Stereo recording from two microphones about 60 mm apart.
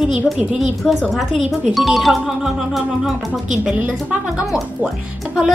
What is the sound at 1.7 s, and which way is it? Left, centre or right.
Speech, centre.